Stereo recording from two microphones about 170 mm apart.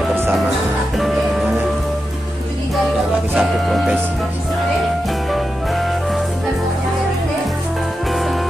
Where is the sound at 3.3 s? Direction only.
Centre (ahead or behind).